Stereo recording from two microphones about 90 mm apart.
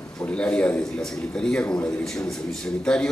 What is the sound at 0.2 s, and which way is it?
A man's voice, 15° left (ahead or behind).